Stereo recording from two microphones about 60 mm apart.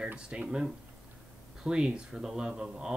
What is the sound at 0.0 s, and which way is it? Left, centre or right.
Speech, centre.